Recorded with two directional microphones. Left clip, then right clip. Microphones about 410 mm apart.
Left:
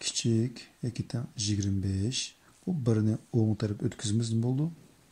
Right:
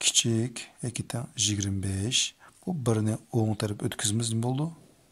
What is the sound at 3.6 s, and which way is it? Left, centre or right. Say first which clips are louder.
Speech: right 3 dB; centre.